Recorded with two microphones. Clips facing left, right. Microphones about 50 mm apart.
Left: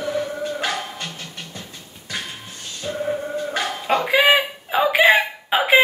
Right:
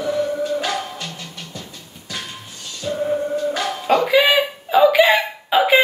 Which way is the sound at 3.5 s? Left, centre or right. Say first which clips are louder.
Right 1 dB; centre.